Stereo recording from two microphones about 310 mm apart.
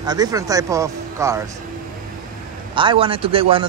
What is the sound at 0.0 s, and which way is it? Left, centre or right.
Speech, centre.